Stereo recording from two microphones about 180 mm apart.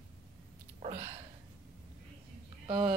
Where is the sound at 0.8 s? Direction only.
40° right (ahead or behind).